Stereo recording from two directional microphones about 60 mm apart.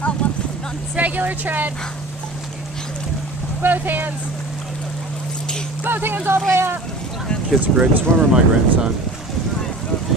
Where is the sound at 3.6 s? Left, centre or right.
Right.